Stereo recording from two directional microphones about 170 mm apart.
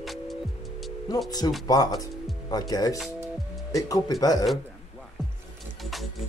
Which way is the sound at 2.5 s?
20° left (ahead or behind).